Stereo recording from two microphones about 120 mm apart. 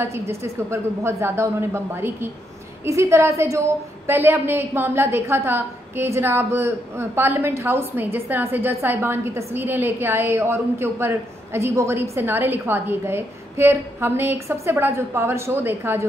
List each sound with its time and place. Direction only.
0.0 s a woman's voice: 25° right (ahead or behind)